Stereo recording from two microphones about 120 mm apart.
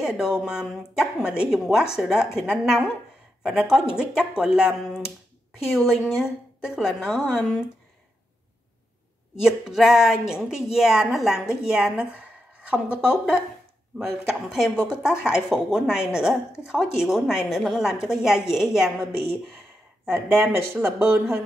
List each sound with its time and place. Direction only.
0.0 s speech: 5° right (ahead or behind)
9.4 s speech: 5° right (ahead or behind)
20.1 s speech: 15° right (ahead or behind)